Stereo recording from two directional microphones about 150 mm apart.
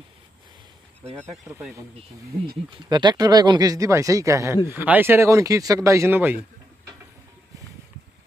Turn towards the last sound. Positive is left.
turn(degrees=-10)  # may be behind; listen again after turning